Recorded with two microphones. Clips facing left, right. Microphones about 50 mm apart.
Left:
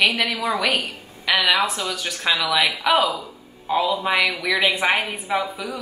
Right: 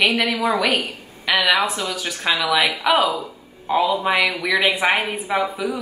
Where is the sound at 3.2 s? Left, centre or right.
Centre.